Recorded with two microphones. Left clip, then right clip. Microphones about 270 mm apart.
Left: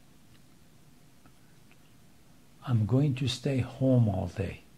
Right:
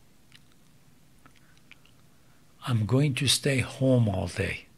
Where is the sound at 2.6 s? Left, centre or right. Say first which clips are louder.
Right 3 dB; centre.